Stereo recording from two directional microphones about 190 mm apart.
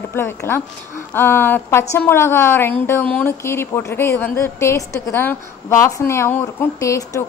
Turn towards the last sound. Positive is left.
turn(degrees=15)  # may be behind; listen again after turning